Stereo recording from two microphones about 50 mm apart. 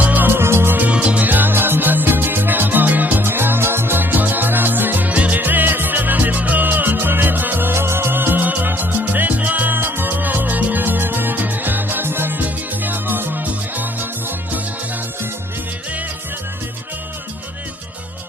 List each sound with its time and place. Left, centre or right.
0.0 s music: right
0.4 s music: right
0.9 s music: centre
1.2 s music: right
3.3 s music: right
5.1 s music: right
5.4 s music: right
7.7 s music: right
12.4 s music: right